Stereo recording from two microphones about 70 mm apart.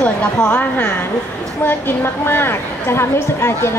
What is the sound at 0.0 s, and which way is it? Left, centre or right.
A woman's voice, centre.